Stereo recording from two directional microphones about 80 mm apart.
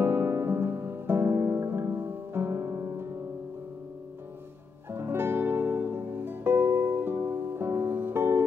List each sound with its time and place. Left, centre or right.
0.0 s music: right
4.9 s music: right